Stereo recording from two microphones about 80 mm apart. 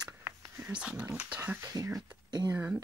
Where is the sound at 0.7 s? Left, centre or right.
Centre.